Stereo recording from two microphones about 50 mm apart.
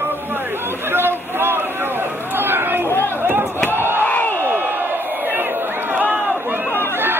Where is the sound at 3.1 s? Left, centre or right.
Right.